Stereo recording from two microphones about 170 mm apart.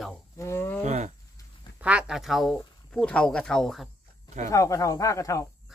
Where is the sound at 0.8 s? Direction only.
45° right (ahead or behind).